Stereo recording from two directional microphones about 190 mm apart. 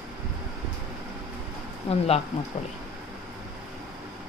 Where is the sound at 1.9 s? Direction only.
30° left (ahead or behind).